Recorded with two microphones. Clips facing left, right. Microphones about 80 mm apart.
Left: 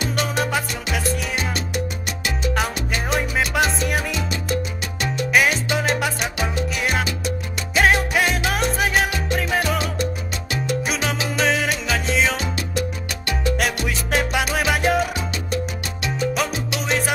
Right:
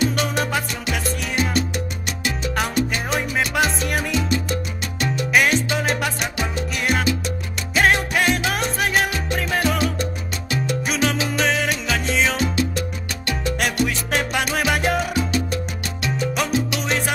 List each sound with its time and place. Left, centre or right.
0.2 s salsa music: centre
2.5 s salsa music: centre
5.3 s salsa music: centre
7.7 s music: centre
8.5 s salsa music: centre
10.9 s music: centre
13.6 s salsa music: centre
16.3 s salsa music: centre